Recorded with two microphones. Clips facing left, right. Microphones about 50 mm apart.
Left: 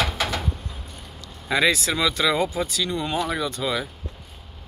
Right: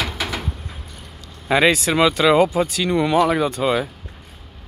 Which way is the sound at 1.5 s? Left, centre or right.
Right.